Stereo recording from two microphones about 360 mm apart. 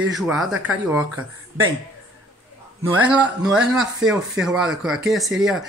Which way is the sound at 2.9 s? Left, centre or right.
Centre.